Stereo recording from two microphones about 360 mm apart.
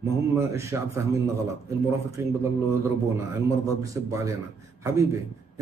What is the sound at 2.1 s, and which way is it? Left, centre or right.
A man's voice, centre.